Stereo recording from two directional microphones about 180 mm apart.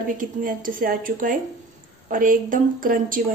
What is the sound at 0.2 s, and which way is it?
Speech, 50° right (ahead or behind).